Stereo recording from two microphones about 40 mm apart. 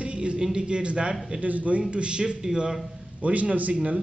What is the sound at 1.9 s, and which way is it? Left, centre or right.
Speech, right.